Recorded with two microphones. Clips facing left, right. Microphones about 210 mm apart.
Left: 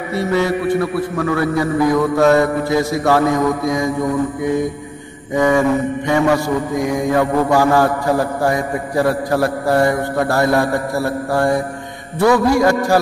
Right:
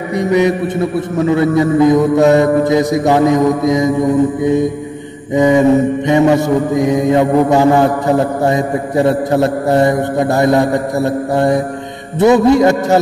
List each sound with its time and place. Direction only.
0.1 s mantra: 15° right (ahead or behind)
12.2 s a man's voice: 20° right (ahead or behind)